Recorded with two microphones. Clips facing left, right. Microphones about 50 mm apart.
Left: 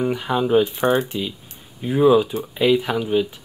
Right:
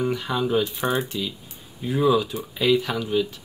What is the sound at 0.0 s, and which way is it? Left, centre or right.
Speech, centre.